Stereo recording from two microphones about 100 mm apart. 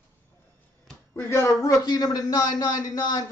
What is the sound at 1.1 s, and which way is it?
A man's voice, 25° left (ahead or behind).